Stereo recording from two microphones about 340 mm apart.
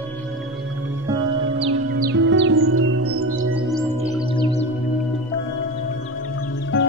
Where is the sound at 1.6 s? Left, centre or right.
Right.